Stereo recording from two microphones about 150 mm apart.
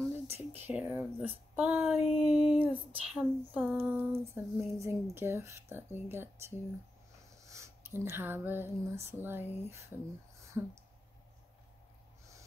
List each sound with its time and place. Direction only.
0.0 s speech: 15° right (ahead or behind)